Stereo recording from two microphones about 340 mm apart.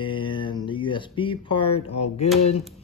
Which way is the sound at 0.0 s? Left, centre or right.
Centre.